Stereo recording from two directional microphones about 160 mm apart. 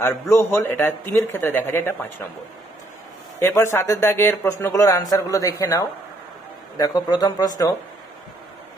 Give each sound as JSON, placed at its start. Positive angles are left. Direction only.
{"t": 0.0, "sound": "a man's voice", "side_deg": 15}
{"t": 3.3, "sound": "a man's voice", "side_deg": 15}